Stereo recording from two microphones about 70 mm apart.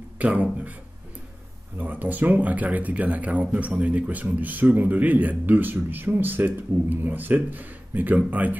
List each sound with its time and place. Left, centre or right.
0.2 s speech: right
1.8 s speech: right